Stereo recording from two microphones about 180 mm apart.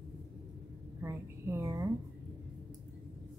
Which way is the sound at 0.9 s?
15° right (ahead or behind).